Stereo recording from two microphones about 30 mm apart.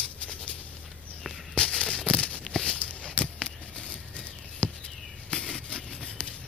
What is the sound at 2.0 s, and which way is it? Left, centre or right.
Tearing, left.